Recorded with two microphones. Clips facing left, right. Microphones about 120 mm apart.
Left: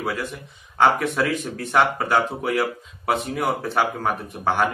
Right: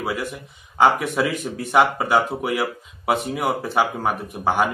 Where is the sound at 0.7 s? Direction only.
10° right (ahead or behind).